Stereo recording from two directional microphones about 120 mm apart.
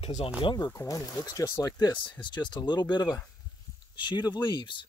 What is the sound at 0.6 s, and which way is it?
Speech, 25° left (ahead or behind).